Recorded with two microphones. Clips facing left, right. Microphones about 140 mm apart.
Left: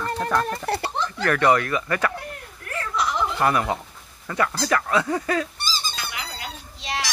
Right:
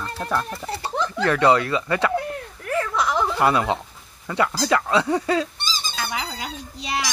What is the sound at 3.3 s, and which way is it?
Speech, 20° right (ahead or behind).